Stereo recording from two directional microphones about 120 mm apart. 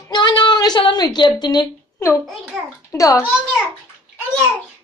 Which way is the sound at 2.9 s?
30° left (ahead or behind).